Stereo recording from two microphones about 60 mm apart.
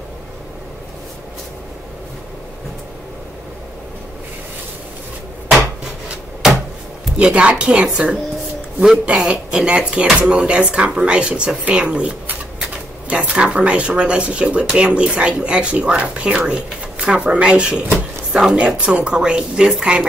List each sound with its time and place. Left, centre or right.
7.2 s speech: centre